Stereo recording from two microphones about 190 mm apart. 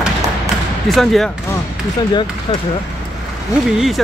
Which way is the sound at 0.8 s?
Centre (ahead or behind).